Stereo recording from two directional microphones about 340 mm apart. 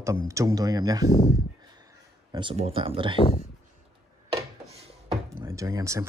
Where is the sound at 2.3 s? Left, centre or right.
Centre.